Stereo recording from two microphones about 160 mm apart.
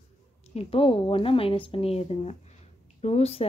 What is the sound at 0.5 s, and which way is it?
Speech, 35° left (ahead or behind).